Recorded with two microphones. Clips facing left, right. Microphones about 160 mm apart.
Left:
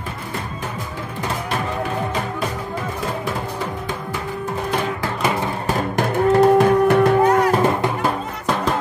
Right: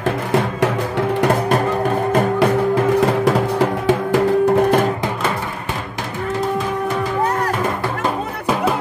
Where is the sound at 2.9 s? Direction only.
80° right.